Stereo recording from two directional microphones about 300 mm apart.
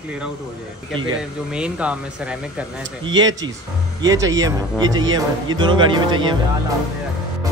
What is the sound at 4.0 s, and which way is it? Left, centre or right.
Speech, centre.